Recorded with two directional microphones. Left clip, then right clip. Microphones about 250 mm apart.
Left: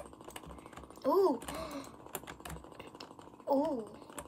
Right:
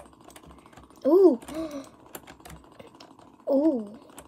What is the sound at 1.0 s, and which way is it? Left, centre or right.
Speech, centre.